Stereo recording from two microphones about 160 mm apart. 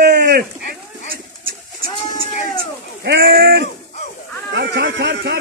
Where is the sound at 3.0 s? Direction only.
75° right (ahead or behind); by 5.4 s 90° right.